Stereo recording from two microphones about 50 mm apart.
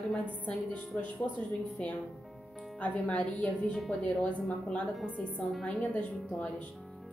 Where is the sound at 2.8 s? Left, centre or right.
Left.